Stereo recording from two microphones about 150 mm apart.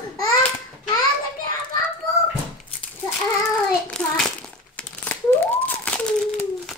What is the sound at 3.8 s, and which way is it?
Crumpling, 5° left (ahead or behind).